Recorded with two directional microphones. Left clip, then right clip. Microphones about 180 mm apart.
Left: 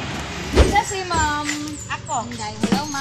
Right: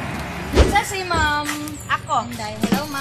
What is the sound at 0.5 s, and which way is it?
Vehicle, centre (ahead or behind).